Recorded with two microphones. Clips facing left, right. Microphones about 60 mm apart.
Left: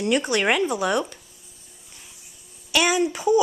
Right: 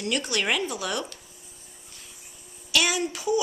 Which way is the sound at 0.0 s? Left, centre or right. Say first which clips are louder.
Left 6 dB; left.